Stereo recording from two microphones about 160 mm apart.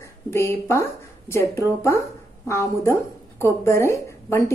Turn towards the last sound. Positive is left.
turn(degrees=15)  # may be behind; listen again after turning